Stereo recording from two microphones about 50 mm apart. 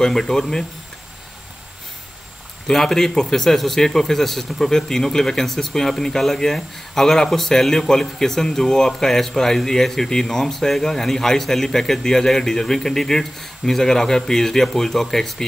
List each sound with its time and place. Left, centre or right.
0.0 s a man's voice: centre
2.7 s a man's voice: centre